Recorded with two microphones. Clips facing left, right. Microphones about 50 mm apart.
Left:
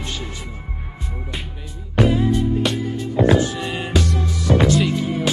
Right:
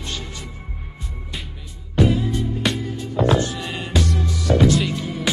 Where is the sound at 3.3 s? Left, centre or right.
Centre.